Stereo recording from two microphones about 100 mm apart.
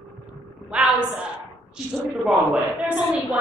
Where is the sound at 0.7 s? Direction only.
10° right (ahead or behind).